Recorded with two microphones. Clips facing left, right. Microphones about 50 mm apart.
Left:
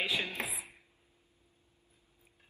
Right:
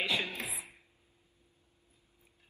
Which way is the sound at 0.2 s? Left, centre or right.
Left.